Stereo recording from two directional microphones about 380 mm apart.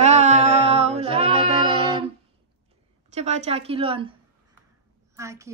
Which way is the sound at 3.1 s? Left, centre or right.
Centre.